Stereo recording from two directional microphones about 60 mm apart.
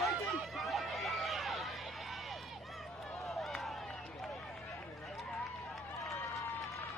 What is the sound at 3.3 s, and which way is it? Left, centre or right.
Run, centre.